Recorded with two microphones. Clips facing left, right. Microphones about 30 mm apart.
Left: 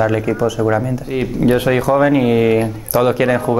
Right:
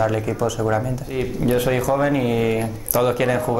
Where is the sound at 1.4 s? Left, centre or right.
Left.